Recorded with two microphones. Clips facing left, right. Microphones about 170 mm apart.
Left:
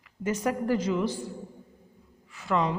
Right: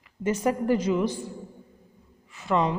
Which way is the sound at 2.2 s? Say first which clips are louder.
Right 2 dB; 20° right (ahead or behind).